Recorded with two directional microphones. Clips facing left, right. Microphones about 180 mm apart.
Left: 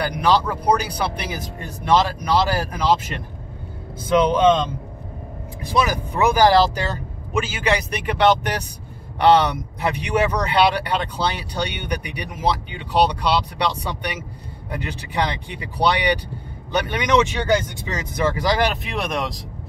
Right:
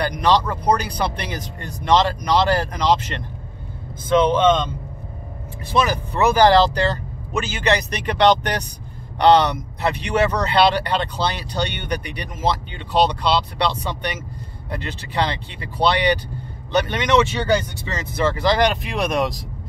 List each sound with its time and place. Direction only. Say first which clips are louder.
0.0 s speech: right 1 dB; 5° left (ahead or behind)
5.6 s speech: right 1 dB; 10° left (ahead or behind)